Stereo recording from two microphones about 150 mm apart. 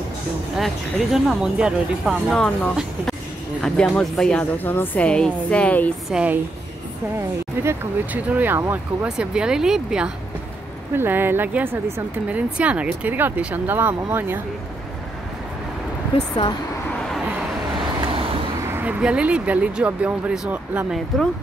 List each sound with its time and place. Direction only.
0.6 s a woman's voice: centre (ahead or behind)
6.0 s speech: 5° right (ahead or behind)
7.6 s speech: 15° right (ahead or behind)
16.1 s speech: 40° left (ahead or behind)
18.7 s speech: 10° right (ahead or behind)